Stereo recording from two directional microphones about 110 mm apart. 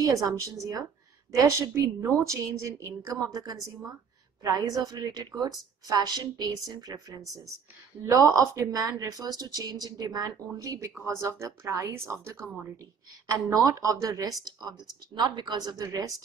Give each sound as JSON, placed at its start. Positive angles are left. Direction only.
{"t": 0.0, "sound": "a woman's voice", "side_deg": -35}
{"t": 13.7, "sound": "speech", "side_deg": -30}